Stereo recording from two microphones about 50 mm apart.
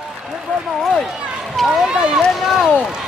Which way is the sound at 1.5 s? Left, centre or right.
Centre.